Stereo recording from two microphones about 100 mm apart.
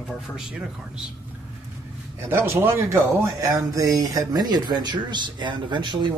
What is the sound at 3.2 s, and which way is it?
Speech, 35° right (ahead or behind).